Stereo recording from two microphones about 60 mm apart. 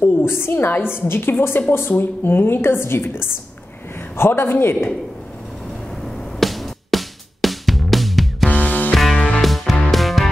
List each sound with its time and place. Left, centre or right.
0.0 s a woman's voice: left
6.0 s music: centre
8.5 s music: left
8.9 s music: centre